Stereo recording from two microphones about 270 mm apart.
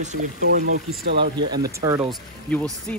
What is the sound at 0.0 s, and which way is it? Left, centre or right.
Speech, right.